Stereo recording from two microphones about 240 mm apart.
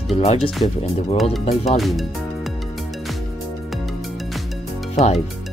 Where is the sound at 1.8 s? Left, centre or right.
Centre.